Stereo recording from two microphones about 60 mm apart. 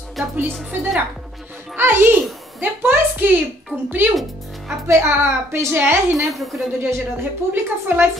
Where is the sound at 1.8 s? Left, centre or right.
Right.